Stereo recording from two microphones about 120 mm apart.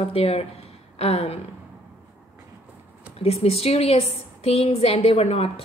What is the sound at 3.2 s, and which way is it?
A woman's voice, 55° left (ahead or behind).